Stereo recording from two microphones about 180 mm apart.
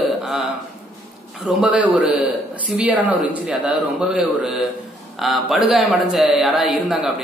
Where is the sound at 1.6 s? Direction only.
5° right (ahead or behind).